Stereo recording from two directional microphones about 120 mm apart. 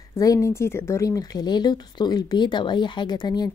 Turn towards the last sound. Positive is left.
turn(degrees=35)  # may be behind; listen again after turning